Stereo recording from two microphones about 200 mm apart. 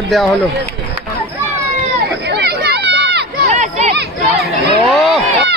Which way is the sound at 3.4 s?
35° right (ahead or behind).